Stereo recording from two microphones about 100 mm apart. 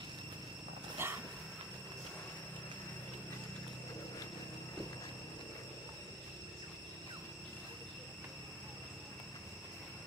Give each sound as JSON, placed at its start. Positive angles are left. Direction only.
{"t": 1.0, "sound": "dog", "side_deg": -25}